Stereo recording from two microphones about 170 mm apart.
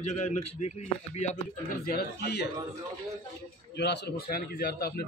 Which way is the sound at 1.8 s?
65° left (ahead or behind).